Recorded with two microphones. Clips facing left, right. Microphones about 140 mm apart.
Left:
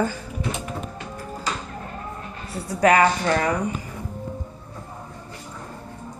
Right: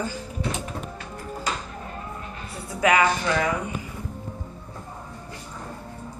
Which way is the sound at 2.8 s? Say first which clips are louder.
Left 3 dB; 40° left (ahead or behind).